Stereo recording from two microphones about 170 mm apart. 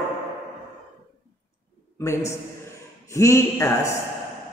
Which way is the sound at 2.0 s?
15° left (ahead or behind).